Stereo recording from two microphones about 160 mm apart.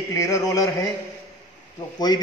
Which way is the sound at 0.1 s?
20° left (ahead or behind).